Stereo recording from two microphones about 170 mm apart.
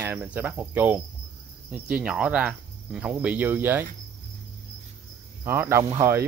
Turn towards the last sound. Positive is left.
turn(degrees=-15)  # may be behind; listen again after turning